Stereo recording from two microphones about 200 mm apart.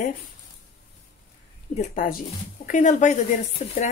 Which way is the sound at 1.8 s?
40° left (ahead or behind).